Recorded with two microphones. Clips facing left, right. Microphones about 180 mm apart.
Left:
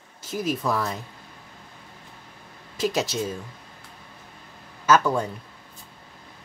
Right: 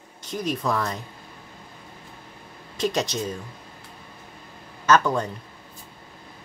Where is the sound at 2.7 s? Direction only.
5° left (ahead or behind).